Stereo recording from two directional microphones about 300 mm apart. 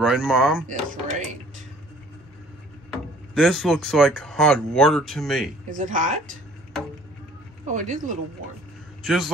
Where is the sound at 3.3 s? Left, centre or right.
Centre.